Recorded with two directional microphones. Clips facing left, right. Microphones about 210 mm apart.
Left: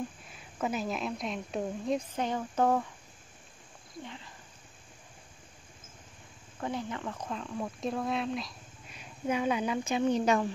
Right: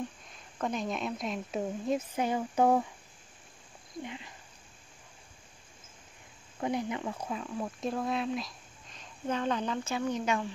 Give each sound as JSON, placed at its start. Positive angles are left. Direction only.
{"t": 0.3, "sound": "speech", "side_deg": 5}
{"t": 4.0, "sound": "speech", "side_deg": -15}
{"t": 6.6, "sound": "speech", "side_deg": -15}
{"t": 10.0, "sound": "speech", "side_deg": 35}